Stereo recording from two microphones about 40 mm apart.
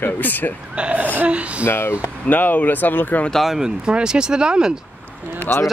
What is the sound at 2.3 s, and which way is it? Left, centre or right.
Speech, left.